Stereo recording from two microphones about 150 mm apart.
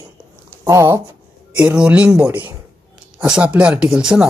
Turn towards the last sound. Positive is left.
turn(degrees=-5)  # may be behind; listen again after turning